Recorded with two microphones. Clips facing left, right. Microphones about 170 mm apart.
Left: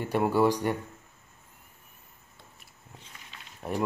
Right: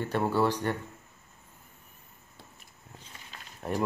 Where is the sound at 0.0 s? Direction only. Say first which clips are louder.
Left 3 dB; 10° left (ahead or behind).